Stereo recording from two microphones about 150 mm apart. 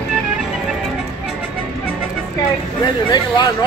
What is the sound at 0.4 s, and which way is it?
Music, centre (ahead or behind).